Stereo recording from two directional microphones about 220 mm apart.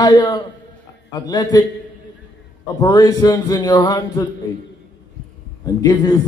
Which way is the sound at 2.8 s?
15° left (ahead or behind).